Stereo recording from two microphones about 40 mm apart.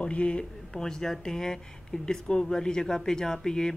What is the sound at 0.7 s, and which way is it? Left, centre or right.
Speech, centre.